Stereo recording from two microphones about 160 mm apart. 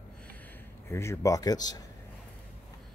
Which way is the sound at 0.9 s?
15° left (ahead or behind).